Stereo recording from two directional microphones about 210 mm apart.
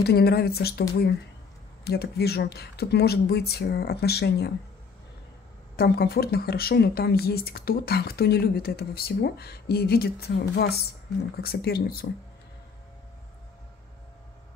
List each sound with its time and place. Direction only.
0.0 s speech: 50° left (ahead or behind)
5.8 s speech: 45° left (ahead or behind)